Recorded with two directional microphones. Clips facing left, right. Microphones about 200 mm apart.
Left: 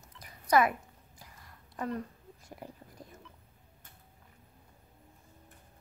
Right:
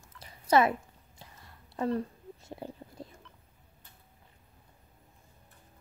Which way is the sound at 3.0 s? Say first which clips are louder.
Right 5 dB; 25° right (ahead or behind).